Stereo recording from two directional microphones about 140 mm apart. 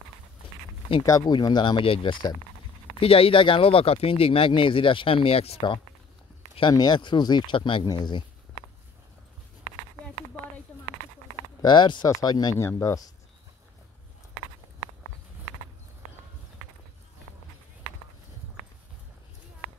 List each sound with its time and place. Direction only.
1.0 s speech: 30° left (ahead or behind)
6.7 s speech: 30° left (ahead or behind)
11.6 s speech: 35° left (ahead or behind)